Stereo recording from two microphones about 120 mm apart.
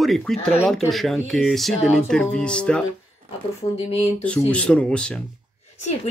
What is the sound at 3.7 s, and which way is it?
Speech, 55° left (ahead or behind).